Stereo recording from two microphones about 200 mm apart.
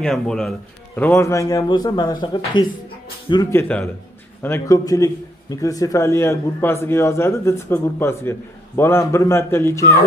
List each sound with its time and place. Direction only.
0.0 s a man's voice: centre (ahead or behind)